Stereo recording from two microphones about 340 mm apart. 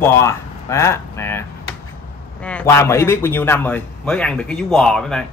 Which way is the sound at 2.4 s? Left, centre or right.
Centre.